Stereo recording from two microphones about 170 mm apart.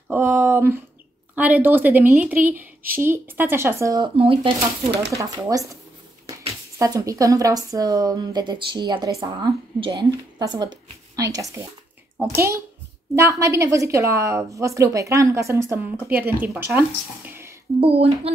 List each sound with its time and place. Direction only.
0.1 s a woman's voice: 15° right (ahead or behind); by 4.5 s 30° right (ahead or behind)
5.1 s a woman's voice: 20° right (ahead or behind)
6.8 s a woman's voice: 20° right (ahead or behind)
17.3 s music: 15° right (ahead or behind)
17.7 s speech: 35° right (ahead or behind)